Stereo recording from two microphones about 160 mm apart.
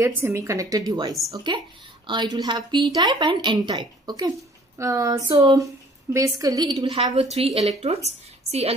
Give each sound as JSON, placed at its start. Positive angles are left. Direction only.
{"t": 0.0, "sound": "a woman's voice", "side_deg": -15}